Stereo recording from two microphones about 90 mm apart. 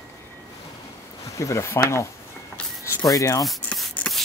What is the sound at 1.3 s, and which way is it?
Speech, 35° left (ahead or behind).